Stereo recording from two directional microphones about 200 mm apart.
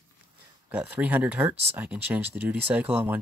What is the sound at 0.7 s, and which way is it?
Speech, 10° right (ahead or behind).